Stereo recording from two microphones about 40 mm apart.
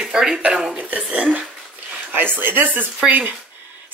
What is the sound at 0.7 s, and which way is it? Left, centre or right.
Speech, right.